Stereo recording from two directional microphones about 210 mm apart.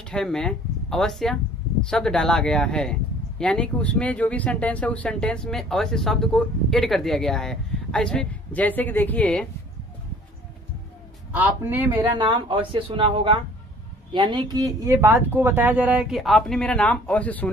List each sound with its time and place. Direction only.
0.0 s speech: 5° left (ahead or behind)
11.3 s a man's voice: 10° right (ahead or behind)
12.2 s speech: 25° right (ahead or behind); by 17.5 s 5° left (ahead or behind)